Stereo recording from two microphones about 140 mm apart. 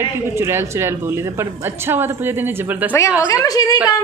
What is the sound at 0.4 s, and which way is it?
Speech, 20° right (ahead or behind).